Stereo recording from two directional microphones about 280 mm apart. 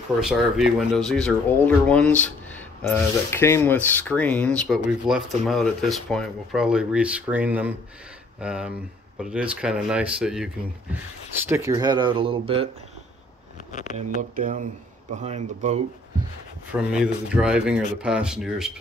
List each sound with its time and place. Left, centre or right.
0.2 s speech: centre
13.7 s speech: left
14.3 s speech: right
16.7 s speech: centre